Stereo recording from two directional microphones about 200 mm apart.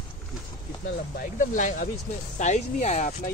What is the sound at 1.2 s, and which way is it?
Speech, 40° left (ahead or behind).